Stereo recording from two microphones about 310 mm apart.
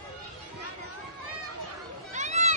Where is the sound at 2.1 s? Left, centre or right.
Right.